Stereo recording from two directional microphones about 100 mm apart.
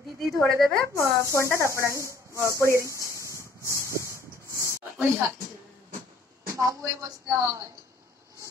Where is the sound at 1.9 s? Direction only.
30° right (ahead or behind).